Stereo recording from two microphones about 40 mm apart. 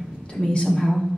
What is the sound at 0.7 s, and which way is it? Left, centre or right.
Speech, centre.